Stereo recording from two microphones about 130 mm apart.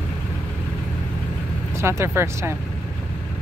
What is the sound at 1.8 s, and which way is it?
Speech, 20° right (ahead or behind).